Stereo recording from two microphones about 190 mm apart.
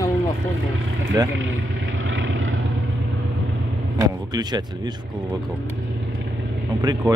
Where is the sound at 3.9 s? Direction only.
20° right (ahead or behind).